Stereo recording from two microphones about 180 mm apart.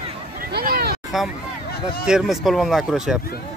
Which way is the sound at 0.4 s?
55° right (ahead or behind).